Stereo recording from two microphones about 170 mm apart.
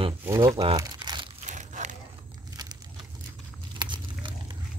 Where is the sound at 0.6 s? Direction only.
20° right (ahead or behind).